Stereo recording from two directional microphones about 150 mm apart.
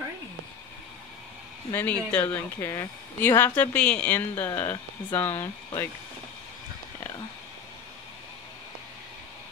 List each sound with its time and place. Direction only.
1.7 s speech: 10° left (ahead or behind)